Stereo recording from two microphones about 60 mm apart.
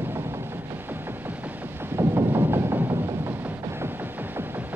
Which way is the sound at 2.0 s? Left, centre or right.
Right.